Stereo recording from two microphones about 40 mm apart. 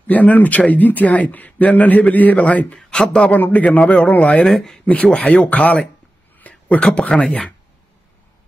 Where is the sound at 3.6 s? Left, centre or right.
Left.